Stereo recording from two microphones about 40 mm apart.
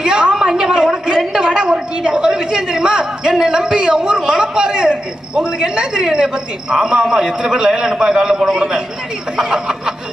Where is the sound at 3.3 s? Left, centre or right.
Centre.